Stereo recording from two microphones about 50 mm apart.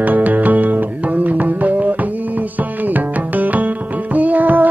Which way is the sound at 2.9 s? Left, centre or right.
Right.